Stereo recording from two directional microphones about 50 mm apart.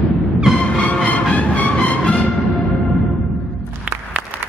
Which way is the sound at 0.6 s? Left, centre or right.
Left.